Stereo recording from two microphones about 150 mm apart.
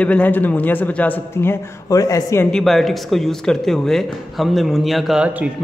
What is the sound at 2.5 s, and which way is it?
Speech, centre (ahead or behind).